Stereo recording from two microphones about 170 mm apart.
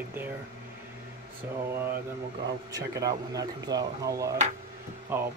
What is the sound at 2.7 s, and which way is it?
Speech, 20° right (ahead or behind).